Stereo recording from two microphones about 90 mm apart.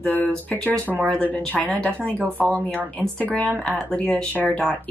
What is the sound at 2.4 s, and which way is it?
Speech, centre (ahead or behind).